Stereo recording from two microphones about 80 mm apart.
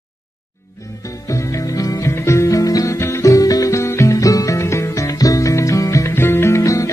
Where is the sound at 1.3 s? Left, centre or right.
Left.